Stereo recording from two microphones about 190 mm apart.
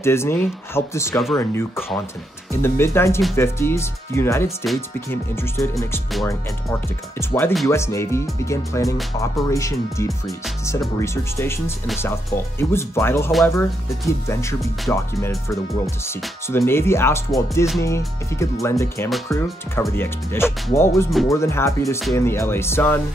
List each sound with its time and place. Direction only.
0.0 s speech: 15° left (ahead or behind)
7.2 s speech: 10° left (ahead or behind)